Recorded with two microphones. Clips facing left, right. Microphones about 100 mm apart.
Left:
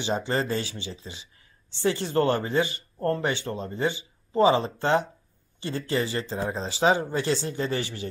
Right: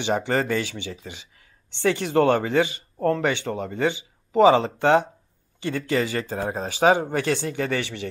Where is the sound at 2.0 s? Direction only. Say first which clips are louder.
Right 6 dB; 70° right (ahead or behind).